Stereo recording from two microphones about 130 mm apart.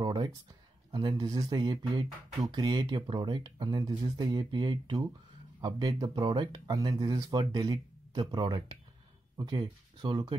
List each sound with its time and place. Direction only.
0.0 s speech: 35° right (ahead or behind)
6.7 s speech: 25° right (ahead or behind)